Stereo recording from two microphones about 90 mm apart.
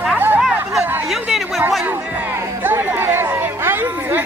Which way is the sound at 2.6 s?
30° right (ahead or behind).